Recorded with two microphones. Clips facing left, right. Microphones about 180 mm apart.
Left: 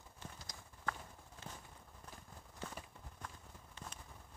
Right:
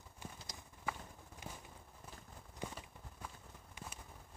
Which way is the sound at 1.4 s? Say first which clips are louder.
Right 1 dB; 15° right (ahead or behind).